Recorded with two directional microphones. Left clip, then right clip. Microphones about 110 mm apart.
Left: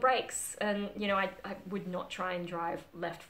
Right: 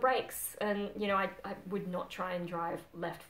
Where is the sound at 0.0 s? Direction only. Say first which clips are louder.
Left 2 dB; 10° right (ahead or behind).